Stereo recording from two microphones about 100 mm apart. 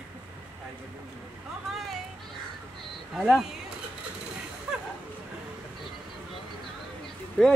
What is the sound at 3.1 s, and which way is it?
Speech, 5° right (ahead or behind).